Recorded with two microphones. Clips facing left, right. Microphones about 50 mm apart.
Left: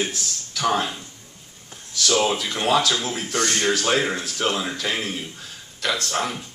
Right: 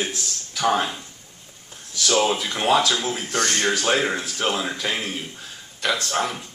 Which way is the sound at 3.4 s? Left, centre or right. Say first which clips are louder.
Even; right.